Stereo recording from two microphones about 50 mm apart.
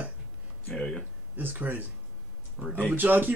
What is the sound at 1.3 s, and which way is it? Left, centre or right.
Speech, right.